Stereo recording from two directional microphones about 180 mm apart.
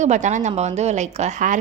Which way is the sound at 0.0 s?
40° right (ahead or behind).